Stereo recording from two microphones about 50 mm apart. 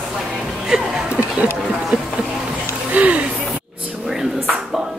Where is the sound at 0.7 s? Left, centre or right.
Centre.